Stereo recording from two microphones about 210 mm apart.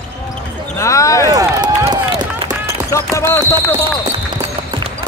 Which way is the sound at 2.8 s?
15° left (ahead or behind).